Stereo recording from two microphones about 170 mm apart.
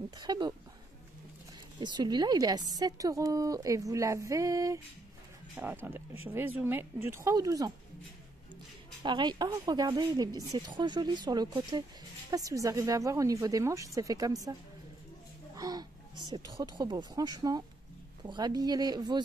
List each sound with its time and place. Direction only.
0.2 s speech: 25° right (ahead or behind)
1.8 s speech: 25° right (ahead or behind)
9.0 s speech: 25° right (ahead or behind)
15.5 s speech: 20° right (ahead or behind)